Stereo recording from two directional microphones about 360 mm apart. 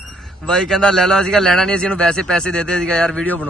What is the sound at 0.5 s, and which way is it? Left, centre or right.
A man's voice, centre.